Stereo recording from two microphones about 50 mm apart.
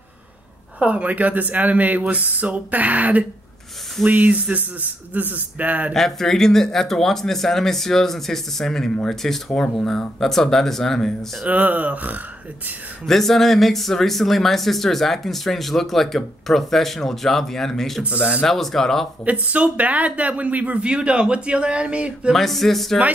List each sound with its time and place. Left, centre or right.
0.7 s speech: right
5.9 s speech: centre
11.4 s speech: right
13.0 s speech: centre
18.0 s speech: right
18.4 s speech: centre
19.2 s speech: right
22.3 s speech: centre